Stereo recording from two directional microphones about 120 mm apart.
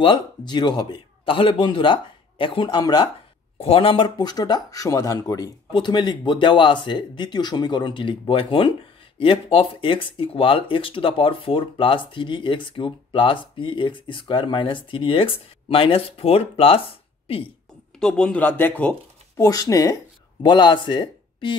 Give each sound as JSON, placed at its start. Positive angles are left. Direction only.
{"t": 0.0, "sound": "speech", "side_deg": 40}
{"t": 3.5, "sound": "speech", "side_deg": 55}
{"t": 18.0, "sound": "speech", "side_deg": 10}
{"t": 19.3, "sound": "speech", "side_deg": 30}
{"t": 20.4, "sound": "speech", "side_deg": 40}